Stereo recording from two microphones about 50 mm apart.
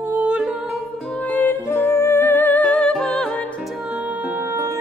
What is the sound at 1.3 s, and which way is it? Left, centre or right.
Music, left.